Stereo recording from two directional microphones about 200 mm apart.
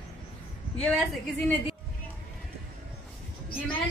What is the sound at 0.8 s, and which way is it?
Speech, 5° left (ahead or behind).